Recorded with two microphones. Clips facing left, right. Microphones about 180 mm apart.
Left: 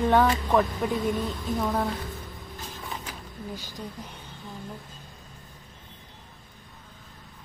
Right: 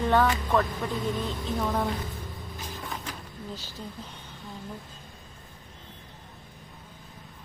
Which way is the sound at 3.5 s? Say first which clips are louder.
Left 2 dB; 15° left (ahead or behind).